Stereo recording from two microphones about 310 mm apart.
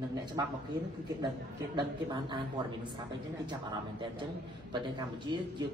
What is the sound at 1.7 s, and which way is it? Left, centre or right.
Speech, centre.